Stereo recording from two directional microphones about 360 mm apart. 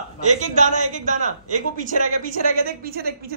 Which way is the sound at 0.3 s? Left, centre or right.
Centre.